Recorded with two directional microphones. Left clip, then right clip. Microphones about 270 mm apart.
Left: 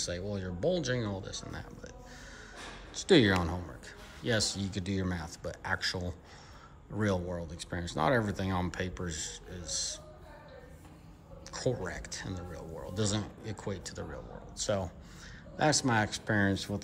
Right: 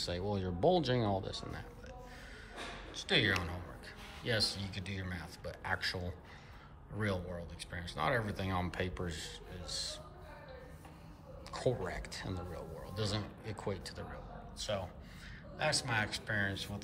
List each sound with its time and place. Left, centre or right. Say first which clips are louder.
0.0 s speech: left 1 dB; centre
2.9 s speech: left 7 dB; centre
11.5 s speech: left 2 dB; centre
14.6 s speech: left 6 dB; centre